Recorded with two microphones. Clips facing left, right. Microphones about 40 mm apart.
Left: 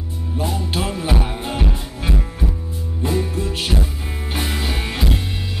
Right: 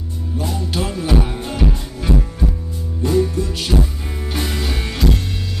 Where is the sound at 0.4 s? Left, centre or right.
Centre.